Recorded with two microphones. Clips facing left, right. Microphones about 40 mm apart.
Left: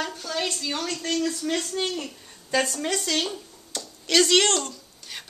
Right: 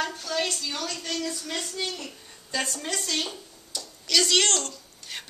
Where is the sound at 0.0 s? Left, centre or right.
Centre.